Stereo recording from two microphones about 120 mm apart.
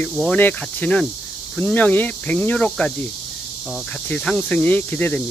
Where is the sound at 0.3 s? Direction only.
15° left (ahead or behind).